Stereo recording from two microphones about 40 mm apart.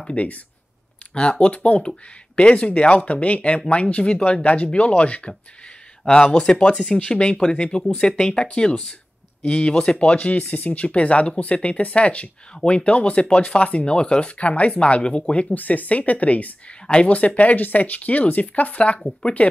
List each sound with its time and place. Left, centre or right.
0.1 s speech: left
15.5 s speech: left
16.8 s speech: left
17.1 s speech: left